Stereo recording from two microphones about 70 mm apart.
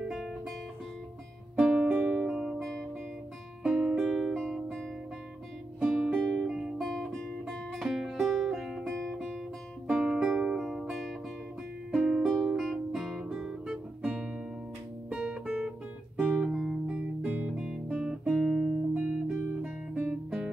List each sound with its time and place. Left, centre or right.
1.6 s music: centre
9.8 s music: centre
14.0 s music: centre
16.4 s music: centre
16.8 s guitar: centre
17.8 s music: centre
19.9 s guitar: centre
20.2 s guitar: centre